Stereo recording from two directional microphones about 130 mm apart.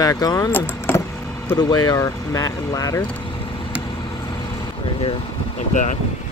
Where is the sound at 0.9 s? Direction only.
15° left (ahead or behind).